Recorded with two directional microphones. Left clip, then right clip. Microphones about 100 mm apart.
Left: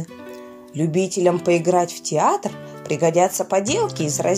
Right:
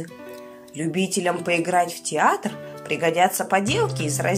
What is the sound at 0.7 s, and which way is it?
Speech, 35° left (ahead or behind).